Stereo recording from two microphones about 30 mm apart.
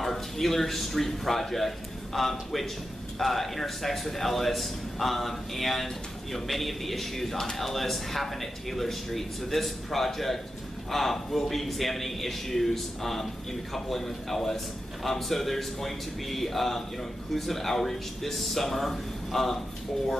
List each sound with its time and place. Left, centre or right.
0.0 s a man's voice: centre